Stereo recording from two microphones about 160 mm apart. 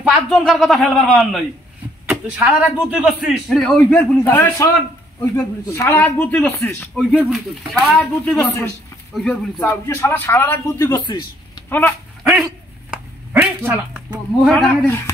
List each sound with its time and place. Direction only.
0.0 s a man's voice: centre (ahead or behind)
2.0 s a sound: 10° right (ahead or behind)
3.0 s a man's voice: 5° right (ahead or behind); by 6.8 s 15° left (ahead or behind)
7.0 s a man's voice: 5° right (ahead or behind)
8.1 s speech: 15° left (ahead or behind)
9.1 s a man's voice: 5° left (ahead or behind)
9.7 s speech: 20° left (ahead or behind)
12.2 s dog: centre (ahead or behind)
12.9 s a sound: 15° right (ahead or behind)
14.4 s a man's voice: centre (ahead or behind)